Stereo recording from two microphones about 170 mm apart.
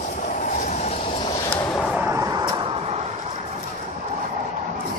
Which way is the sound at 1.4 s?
25° left (ahead or behind).